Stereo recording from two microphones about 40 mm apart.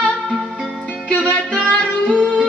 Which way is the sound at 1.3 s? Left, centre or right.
Left.